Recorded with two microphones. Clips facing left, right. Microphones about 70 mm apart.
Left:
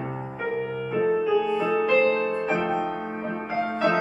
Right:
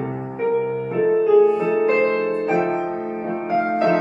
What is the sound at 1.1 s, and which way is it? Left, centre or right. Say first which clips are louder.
Music: right 10 dB; right.